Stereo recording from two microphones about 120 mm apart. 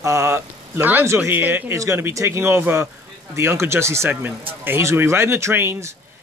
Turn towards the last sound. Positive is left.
turn(degrees=-20)  # may be behind; listen again after turning